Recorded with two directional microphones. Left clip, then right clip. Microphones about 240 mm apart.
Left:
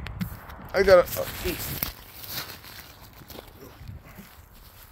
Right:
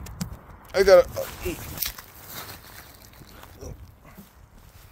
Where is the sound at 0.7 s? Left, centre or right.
Right.